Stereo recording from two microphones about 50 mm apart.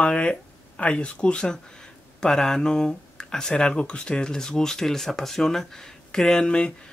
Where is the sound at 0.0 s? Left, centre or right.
Left.